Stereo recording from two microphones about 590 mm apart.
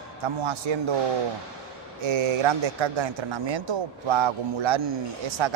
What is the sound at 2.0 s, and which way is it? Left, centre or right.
Speech, right.